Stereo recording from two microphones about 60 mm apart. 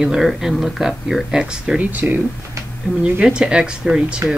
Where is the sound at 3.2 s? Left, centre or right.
Centre.